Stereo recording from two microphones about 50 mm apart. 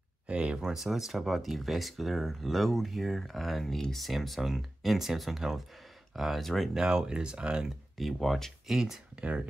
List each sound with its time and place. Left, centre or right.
0.3 s speech: right
0.6 s speech: centre
6.7 s speech: centre
8.0 s speech: centre
8.6 s speech: centre